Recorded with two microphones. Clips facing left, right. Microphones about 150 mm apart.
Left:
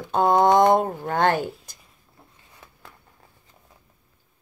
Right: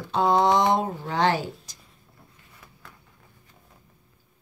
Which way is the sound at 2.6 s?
25° left (ahead or behind).